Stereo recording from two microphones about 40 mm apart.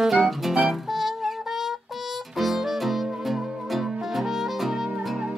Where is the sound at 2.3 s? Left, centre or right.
Centre.